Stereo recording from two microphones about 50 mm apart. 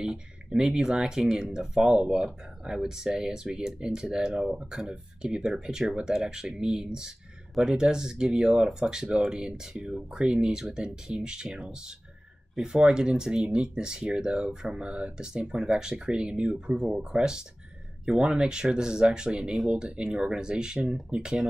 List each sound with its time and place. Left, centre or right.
0.0 s speech: centre